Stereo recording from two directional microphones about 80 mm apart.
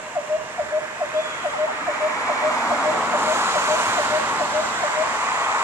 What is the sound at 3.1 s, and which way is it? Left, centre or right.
Vehicle, right.